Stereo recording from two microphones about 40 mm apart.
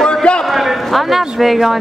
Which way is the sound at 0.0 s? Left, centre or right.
Left.